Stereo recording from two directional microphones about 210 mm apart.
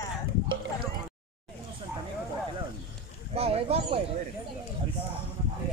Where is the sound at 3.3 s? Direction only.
30° right (ahead or behind).